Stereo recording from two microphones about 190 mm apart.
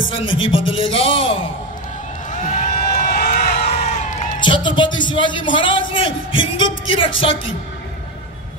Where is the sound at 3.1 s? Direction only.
50° left (ahead or behind).